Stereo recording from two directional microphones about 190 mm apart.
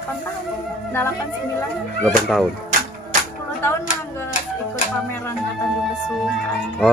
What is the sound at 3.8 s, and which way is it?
Music, 40° left (ahead or behind).